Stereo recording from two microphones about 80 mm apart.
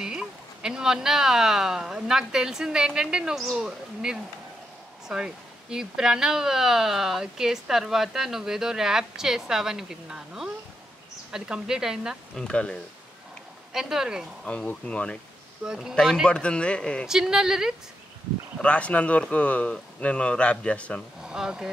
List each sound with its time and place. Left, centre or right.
0.0 s speech: centre
12.4 s speech: centre
13.7 s speech: centre
14.4 s speech: centre
15.6 s speech: centre
15.9 s speech: centre
17.0 s speech: centre
18.6 s speech: centre
21.2 s speech: centre